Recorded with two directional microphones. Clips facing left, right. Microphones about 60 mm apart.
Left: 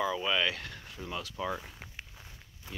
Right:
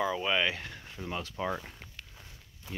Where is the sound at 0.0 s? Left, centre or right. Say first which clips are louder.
Right 1 dB; centre.